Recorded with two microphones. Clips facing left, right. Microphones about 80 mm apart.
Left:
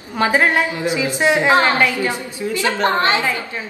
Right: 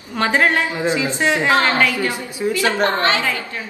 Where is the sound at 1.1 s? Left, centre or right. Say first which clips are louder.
Left 4 dB; left.